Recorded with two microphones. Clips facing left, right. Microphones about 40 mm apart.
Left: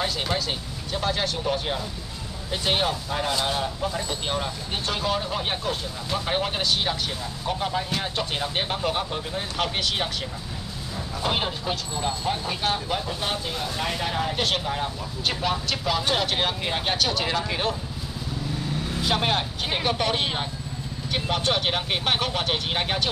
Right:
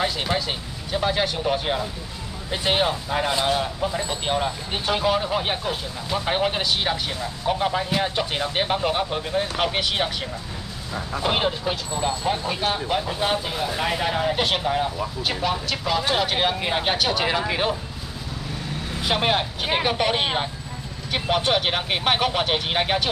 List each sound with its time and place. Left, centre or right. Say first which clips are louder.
0.0 s speech: right 2 dB; centre
11.1 s speech: right 4 dB; centre
19.0 s speech: right 3 dB; centre